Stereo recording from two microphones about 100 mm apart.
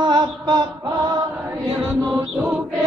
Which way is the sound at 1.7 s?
15° right (ahead or behind).